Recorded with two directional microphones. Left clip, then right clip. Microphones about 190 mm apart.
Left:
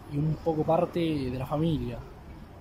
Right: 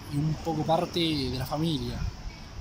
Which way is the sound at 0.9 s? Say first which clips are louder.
Right 1 dB; 35° left (ahead or behind).